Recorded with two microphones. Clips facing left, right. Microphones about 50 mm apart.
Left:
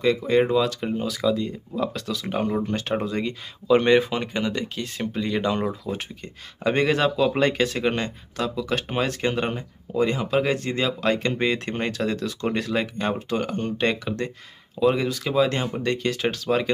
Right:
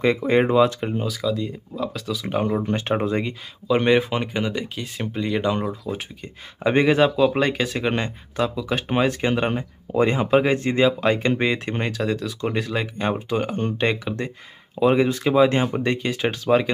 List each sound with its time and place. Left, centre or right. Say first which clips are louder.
0.0 s speech: right 1 dB; right
0.8 s speech: left 1 dB; centre
2.6 s speech: right 3 dB; right
3.6 s speech: left 1 dB; centre
6.6 s speech: right 3 dB; centre
9.9 s speech: right 4 dB; right; by 14.3 s centre
14.8 s speech: right 3 dB; right